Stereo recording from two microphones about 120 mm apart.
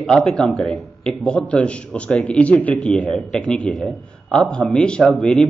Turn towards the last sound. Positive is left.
turn(degrees=5)  # may be behind; listen again after turning